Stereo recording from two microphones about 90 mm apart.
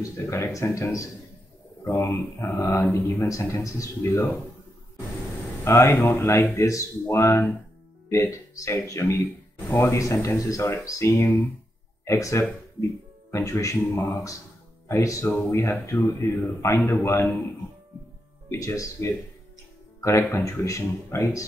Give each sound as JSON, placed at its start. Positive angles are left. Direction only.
{"t": 0.0, "sound": "speech", "side_deg": 35}
{"t": 1.9, "sound": "a man's voice", "side_deg": 20}
{"t": 3.3, "sound": "speech", "side_deg": 35}
{"t": 4.1, "sound": "a man's voice", "side_deg": 20}
{"t": 5.6, "sound": "a man's voice", "side_deg": 30}
{"t": 14.9, "sound": "a man's voice", "side_deg": 35}
{"t": 18.5, "sound": "speech", "side_deg": 30}